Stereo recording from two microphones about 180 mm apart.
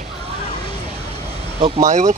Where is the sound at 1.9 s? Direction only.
40° right (ahead or behind).